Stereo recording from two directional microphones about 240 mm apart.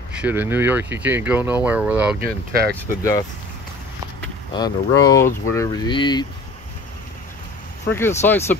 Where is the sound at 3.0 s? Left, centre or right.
Centre.